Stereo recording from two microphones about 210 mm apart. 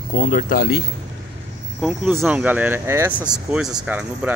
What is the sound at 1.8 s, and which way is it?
Speech, centre (ahead or behind).